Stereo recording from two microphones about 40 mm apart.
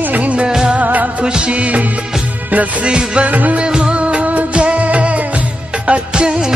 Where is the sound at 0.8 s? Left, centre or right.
Right.